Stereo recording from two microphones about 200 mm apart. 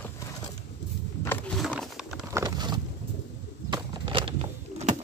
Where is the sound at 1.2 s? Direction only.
5° left (ahead or behind).